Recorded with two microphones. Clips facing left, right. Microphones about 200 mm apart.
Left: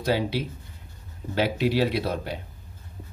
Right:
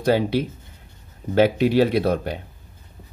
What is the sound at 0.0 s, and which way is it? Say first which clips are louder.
Speech: right 6 dB; 50° right (ahead or behind).